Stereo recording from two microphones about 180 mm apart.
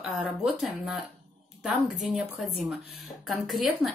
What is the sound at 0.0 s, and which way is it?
Speech, 5° right (ahead or behind).